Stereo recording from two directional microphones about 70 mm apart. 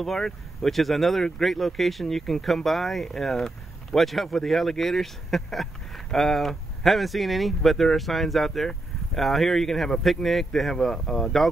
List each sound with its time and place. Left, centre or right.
0.0 s speech: centre